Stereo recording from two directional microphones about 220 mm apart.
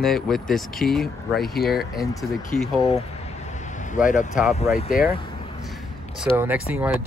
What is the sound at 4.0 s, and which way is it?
Speech, 35° left (ahead or behind).